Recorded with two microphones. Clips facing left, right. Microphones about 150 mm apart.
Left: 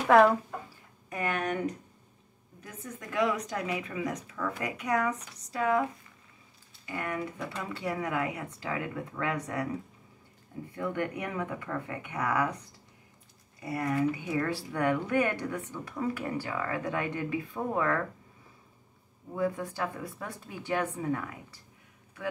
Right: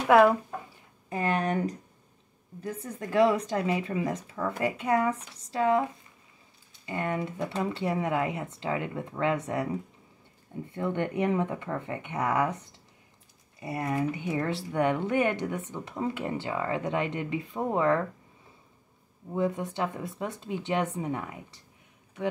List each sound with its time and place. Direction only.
0.1 s speech: 5° right (ahead or behind)
1.1 s speech: 30° right (ahead or behind)
2.6 s speech: 30° right (ahead or behind)
6.9 s speech: 25° right (ahead or behind)
10.7 s speech: 25° right (ahead or behind)
19.3 s speech: 20° right (ahead or behind)